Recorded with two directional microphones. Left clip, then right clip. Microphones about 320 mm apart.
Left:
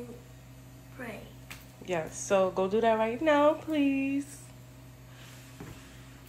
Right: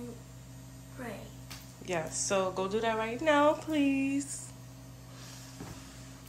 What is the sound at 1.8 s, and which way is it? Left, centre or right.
Speech, centre.